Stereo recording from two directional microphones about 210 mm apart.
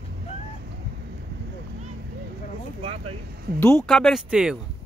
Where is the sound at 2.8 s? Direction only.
30° right (ahead or behind).